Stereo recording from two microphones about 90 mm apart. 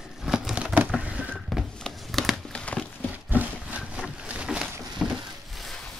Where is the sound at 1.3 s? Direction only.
Centre (ahead or behind).